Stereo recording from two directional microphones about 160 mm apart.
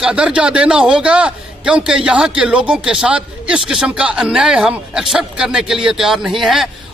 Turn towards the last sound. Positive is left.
turn(degrees=0)  # may be behind; listen again after turning